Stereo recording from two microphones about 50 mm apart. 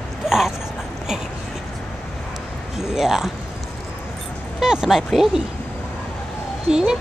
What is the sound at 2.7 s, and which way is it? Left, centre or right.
Speech, centre.